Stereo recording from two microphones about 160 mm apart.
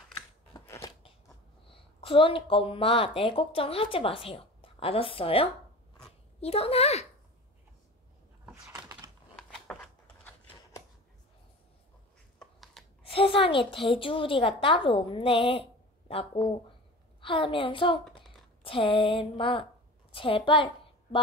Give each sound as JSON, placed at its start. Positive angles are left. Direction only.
{"t": 0.7, "sound": "biting", "side_deg": 20}
{"t": 1.7, "sound": "a woman's voice", "side_deg": 35}
{"t": 8.5, "sound": "typing", "side_deg": -20}
{"t": 9.4, "sound": "a sound", "side_deg": 5}
{"t": 12.4, "sound": "a sound", "side_deg": 0}
{"t": 13.0, "sound": "a woman's voice", "side_deg": 35}